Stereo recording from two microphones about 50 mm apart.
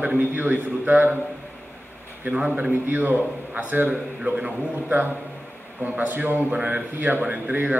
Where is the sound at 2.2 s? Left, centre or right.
Right.